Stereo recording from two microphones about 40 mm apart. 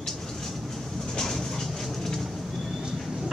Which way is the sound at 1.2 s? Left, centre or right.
Centre.